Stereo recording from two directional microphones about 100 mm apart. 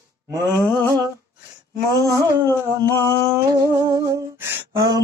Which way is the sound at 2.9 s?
25° left (ahead or behind).